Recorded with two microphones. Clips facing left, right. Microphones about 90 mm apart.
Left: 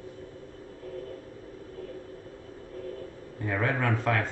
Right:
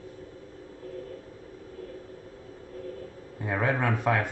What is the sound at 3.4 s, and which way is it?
Speech, 15° right (ahead or behind).